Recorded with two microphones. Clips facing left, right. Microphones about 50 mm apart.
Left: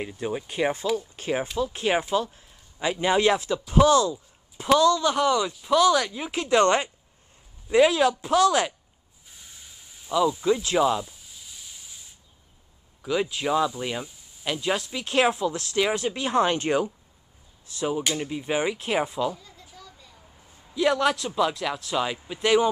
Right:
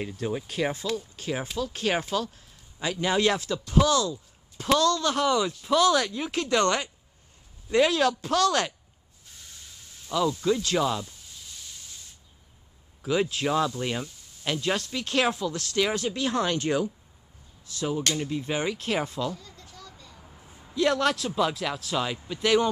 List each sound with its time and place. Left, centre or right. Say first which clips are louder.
0.0 s speech: left 1 dB; centre
0.9 s speech: left 3 dB; left
1.6 s speech: left 2 dB; centre
3.8 s speech: left 6 dB; left
4.1 s speech: left 2 dB; centre
7.7 s speech: left 3 dB; centre
9.3 s a sound: even; centre
13.0 s speech: even; centre; by 16.9 s left
17.6 s speech: left 2 dB; centre
20.2 s a sound: right 3 dB; centre
20.7 s a man's voice: left 2 dB; centre